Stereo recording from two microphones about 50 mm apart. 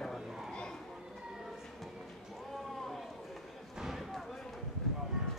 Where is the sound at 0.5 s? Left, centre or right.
Centre.